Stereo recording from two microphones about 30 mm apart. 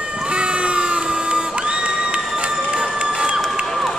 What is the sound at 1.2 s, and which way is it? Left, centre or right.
Crowd, right.